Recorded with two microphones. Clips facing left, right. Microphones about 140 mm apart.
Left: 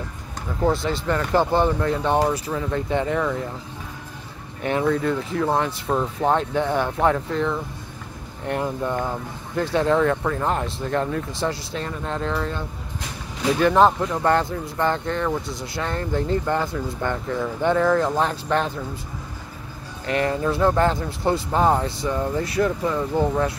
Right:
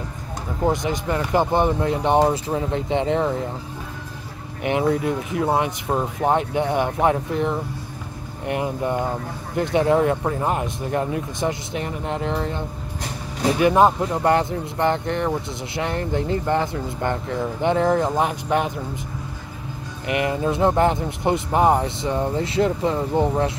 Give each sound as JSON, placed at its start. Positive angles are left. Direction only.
{"t": 0.7, "sound": "speech", "side_deg": -15}
{"t": 4.9, "sound": "speech", "side_deg": -15}
{"t": 20.1, "sound": "speech", "side_deg": -15}